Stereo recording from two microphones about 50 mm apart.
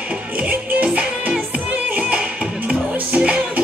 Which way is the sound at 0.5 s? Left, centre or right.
Right.